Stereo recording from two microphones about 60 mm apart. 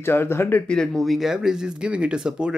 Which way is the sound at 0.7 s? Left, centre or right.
Centre.